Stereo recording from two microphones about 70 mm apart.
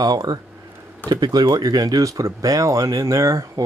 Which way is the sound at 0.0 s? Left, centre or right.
Right.